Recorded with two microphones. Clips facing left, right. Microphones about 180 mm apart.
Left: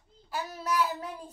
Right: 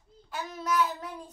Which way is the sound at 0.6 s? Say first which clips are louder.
Right 1 dB; 5° left (ahead or behind).